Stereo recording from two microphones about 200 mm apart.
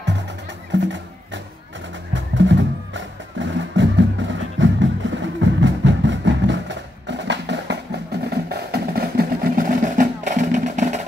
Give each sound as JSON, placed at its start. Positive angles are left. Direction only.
{"t": 0.7, "sound": "speech", "side_deg": -65}
{"t": 2.1, "sound": "music", "side_deg": -65}